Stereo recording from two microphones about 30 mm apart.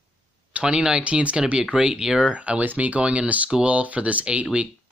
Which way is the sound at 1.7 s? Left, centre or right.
Right.